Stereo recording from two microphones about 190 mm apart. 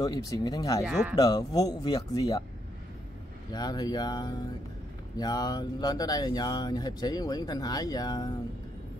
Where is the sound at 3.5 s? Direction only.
20° left (ahead or behind).